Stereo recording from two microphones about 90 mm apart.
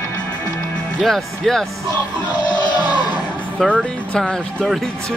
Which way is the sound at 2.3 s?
55° left (ahead or behind).